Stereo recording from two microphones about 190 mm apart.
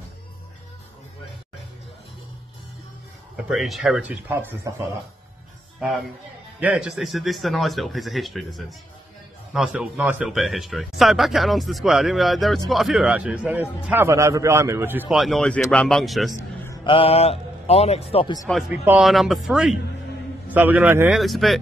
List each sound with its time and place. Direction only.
3.4 s speech: centre (ahead or behind)
5.8 s speech: centre (ahead or behind)
16.6 s a man's voice: 20° left (ahead or behind)
18.5 s a man's voice: 5° right (ahead or behind)
21.2 s speech: centre (ahead or behind)